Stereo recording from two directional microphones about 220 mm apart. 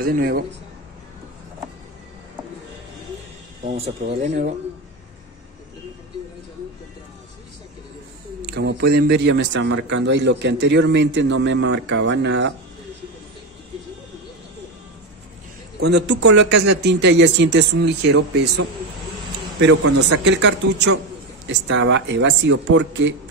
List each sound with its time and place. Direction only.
0.0 s speech: 40° right (ahead or behind)
3.6 s speech: 35° right (ahead or behind)
8.5 s a man's voice: 45° right (ahead or behind)
15.8 s a man's voice: 50° right (ahead or behind)
19.7 s a man's voice: 90° right
20.2 s a man's voice: 55° right (ahead or behind)